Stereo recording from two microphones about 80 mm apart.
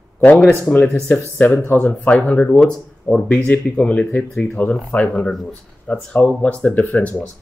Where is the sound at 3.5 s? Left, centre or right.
Centre.